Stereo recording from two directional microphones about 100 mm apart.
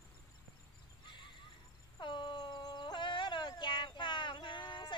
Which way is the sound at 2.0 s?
55° left (ahead or behind).